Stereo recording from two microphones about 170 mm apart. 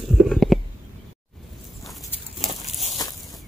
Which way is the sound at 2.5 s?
40° left (ahead or behind).